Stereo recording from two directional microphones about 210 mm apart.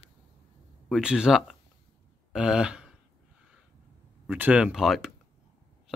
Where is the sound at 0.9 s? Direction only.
5° right (ahead or behind).